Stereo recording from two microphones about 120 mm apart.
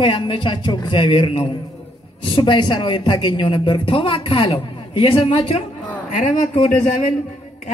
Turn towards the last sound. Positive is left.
turn(degrees=90)